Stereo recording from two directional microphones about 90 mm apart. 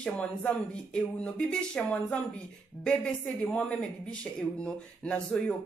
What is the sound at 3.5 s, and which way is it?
Speech, 10° left (ahead or behind).